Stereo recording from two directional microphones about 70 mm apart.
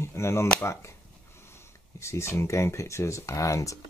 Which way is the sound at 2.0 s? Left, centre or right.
Left.